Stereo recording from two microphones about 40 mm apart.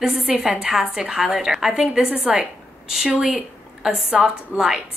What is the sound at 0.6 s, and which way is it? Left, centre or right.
A woman's voice, centre.